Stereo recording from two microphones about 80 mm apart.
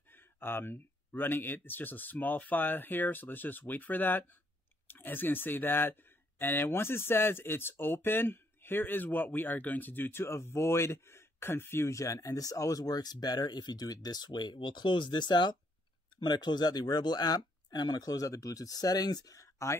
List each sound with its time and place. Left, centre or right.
0.1 s speech: left